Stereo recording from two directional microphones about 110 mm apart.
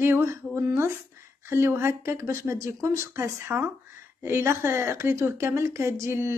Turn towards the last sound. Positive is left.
turn(degrees=-25)  # may be behind; listen again after turning